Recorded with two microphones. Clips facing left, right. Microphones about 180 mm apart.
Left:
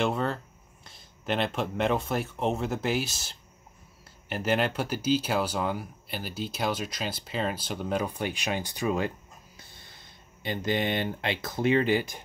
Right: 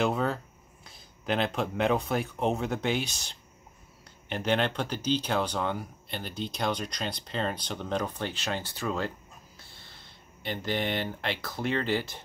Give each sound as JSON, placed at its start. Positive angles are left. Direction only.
{"t": 0.0, "sound": "speech", "side_deg": 0}